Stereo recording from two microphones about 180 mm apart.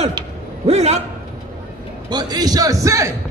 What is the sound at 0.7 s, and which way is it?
Speech, 35° right (ahead or behind).